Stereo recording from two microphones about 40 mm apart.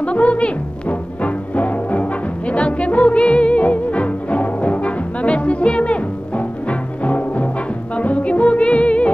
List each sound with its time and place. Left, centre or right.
0.0 s music: left